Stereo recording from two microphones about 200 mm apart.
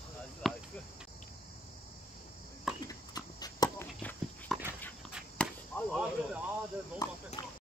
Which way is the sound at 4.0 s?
5° left (ahead or behind).